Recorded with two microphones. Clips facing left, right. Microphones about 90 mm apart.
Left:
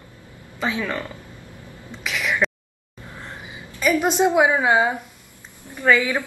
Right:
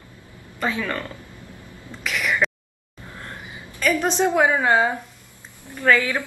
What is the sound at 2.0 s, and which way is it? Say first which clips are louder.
Speech: right 1 dB; 5° left (ahead or behind).